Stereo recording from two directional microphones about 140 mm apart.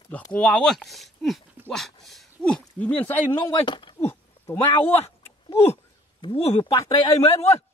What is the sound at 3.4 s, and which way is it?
Speech, 35° left (ahead or behind).